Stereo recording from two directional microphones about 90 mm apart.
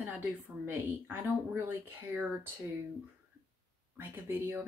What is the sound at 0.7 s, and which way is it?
Speech, 25° right (ahead or behind).